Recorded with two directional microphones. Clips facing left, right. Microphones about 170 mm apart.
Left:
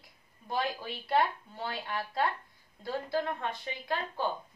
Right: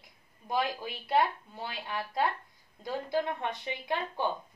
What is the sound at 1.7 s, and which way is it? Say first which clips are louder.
Speech: left 1 dB; 15° right (ahead or behind).